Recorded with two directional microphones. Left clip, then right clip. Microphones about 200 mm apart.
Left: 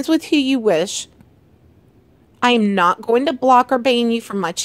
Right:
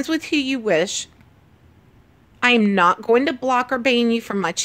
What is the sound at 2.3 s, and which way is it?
Speech, 30° left (ahead or behind).